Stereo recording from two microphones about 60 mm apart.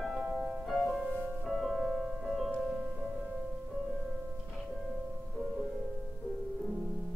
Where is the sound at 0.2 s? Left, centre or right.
Centre.